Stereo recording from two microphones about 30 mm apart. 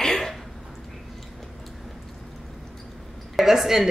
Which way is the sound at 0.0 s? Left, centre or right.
Centre.